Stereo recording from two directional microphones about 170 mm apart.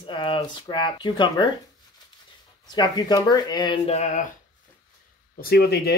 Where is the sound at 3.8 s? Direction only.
40° left (ahead or behind).